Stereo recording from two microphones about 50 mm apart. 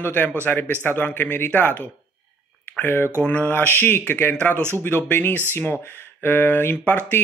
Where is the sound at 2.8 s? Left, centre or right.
Left.